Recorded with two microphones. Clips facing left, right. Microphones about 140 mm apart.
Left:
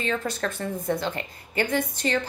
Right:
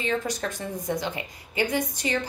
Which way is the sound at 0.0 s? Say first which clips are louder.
Even; 15° right (ahead or behind).